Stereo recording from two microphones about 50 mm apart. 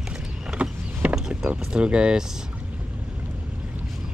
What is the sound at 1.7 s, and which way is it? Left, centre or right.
Speech, centre.